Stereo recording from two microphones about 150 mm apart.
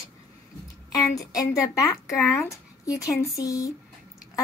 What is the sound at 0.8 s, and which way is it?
A woman's voice, 25° left (ahead or behind).